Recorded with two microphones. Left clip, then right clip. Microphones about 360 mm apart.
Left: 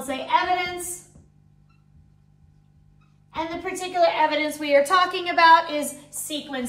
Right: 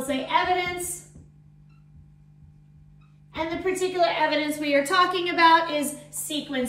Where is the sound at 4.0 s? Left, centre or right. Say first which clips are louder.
Left 4 dB; centre.